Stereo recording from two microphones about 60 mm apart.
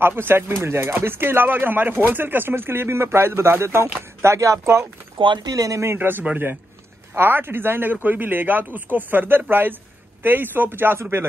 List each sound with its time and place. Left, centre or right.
0.0 s speech: right
5.5 s speech: right
5.9 s speech: right